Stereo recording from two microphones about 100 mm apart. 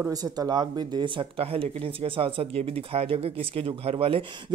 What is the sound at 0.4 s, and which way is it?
Speech, 45° right (ahead or behind).